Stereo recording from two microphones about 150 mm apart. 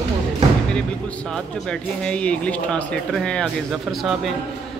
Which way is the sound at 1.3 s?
5° left (ahead or behind).